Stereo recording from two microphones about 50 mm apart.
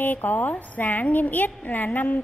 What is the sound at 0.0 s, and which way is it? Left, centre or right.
A woman's voice, left.